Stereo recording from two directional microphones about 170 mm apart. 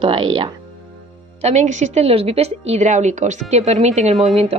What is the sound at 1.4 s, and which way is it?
A woman's voice, 45° right (ahead or behind).